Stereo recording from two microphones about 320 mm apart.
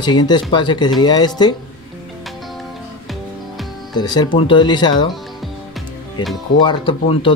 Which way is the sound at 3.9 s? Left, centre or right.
Centre.